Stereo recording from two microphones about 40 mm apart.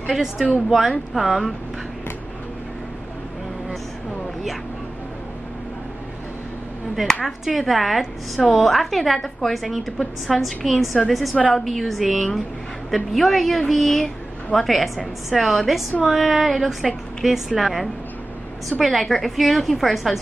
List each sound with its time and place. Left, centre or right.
0.1 s a woman's voice: centre
7.2 s a woman's voice: centre
8.4 s a woman's voice: left
8.6 s a woman's voice: centre